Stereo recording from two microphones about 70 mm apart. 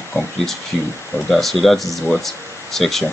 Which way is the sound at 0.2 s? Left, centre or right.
Left.